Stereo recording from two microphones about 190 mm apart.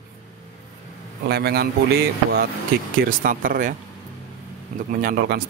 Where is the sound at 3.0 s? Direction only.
45° right (ahead or behind).